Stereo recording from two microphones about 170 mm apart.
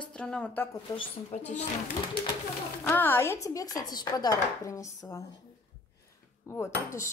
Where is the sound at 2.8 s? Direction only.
10° left (ahead or behind).